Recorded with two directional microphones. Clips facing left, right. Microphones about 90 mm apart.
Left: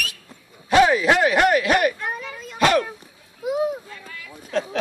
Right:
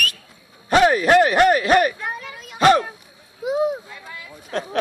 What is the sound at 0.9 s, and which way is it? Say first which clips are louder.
Speech: right 3 dB; 55° right (ahead or behind).